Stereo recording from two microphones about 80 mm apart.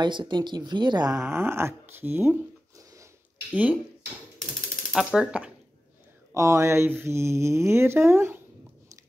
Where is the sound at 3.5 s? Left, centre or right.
Right.